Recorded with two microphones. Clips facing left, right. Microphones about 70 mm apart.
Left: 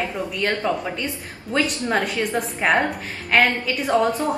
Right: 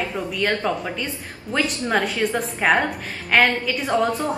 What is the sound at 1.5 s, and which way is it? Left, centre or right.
A woman's voice, centre.